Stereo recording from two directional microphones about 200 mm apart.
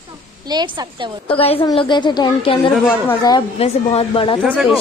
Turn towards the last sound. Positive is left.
turn(degrees=-5)  # may be behind; listen again after turning